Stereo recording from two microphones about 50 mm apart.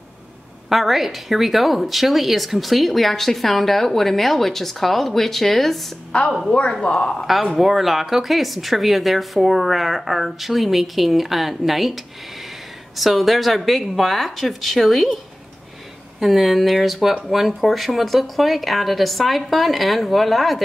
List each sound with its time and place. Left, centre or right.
0.7 s speech: centre
6.1 s speech: left
7.5 s speech: centre
16.2 s speech: centre